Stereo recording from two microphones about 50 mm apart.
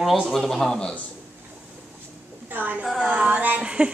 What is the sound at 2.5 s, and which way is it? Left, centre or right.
Speech, right.